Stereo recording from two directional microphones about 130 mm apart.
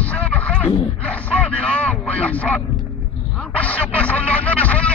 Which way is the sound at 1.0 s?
10° left (ahead or behind).